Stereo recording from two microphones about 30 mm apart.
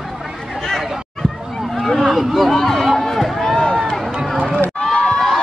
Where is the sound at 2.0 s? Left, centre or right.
Centre.